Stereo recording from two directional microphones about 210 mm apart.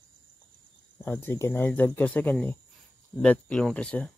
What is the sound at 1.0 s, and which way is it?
Speech, 10° left (ahead or behind).